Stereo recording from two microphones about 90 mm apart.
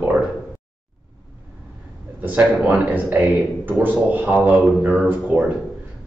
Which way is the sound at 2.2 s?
20° right (ahead or behind).